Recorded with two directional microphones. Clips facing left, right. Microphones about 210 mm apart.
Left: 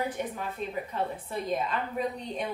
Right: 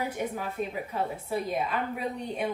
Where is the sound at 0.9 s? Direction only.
5° right (ahead or behind).